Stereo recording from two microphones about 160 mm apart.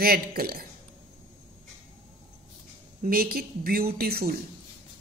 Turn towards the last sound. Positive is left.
turn(degrees=-75)  # may be behind; listen again after turning